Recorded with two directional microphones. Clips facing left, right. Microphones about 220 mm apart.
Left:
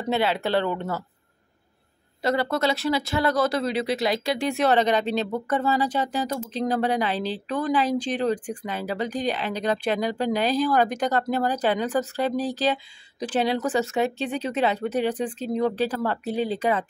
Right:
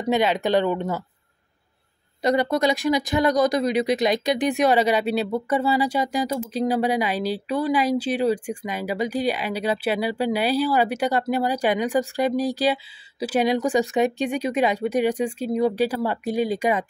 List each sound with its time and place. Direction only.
0.1 s a woman's voice: 15° right (ahead or behind)
2.2 s a woman's voice: 15° right (ahead or behind)